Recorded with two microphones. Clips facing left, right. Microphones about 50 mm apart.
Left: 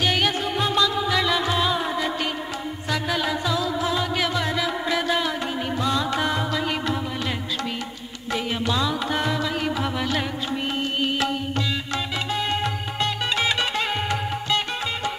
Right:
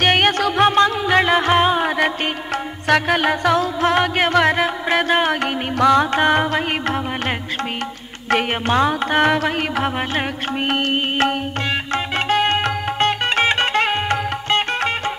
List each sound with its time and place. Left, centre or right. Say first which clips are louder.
0.0 s music: right 7 dB; right
5.3 s music: right 5 dB; right
11.0 s music: right 5 dB; right